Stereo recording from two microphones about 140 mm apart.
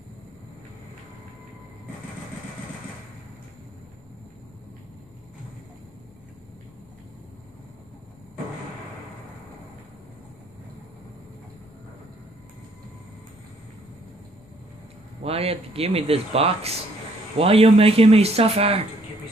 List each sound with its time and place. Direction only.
15.2 s speech: 45° right (ahead or behind)